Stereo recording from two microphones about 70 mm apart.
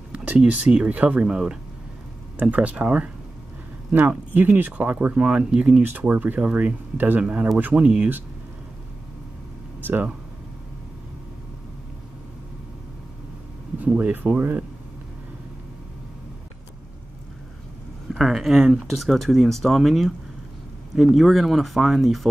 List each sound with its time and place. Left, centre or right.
0.1 s speech: centre
1.3 s a man's voice: centre
2.3 s speech: right
5.8 s a man's voice: right
13.7 s speech: right
18.1 s speech: centre